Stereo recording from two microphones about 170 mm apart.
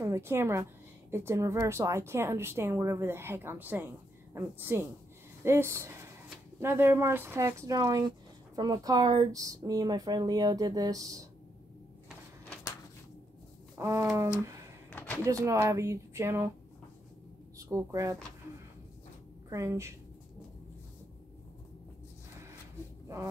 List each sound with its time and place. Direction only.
0.0 s a woman's voice: 15° right (ahead or behind)
13.7 s a woman's voice: 15° right (ahead or behind)
14.9 s a sound: 10° left (ahead or behind)
15.4 s a woman's voice: 15° right (ahead or behind)
17.6 s speech: 15° right (ahead or behind)
19.5 s a woman's voice: 15° right (ahead or behind)